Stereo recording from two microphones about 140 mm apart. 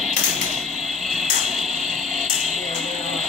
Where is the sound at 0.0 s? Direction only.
Centre (ahead or behind).